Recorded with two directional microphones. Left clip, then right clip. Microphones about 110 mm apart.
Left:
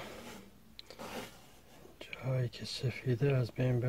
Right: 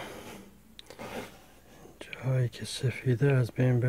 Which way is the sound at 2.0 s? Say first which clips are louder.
Right 4 dB; 30° right (ahead or behind).